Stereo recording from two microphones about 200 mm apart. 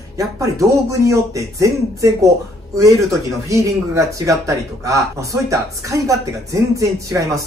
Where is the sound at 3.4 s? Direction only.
15° right (ahead or behind).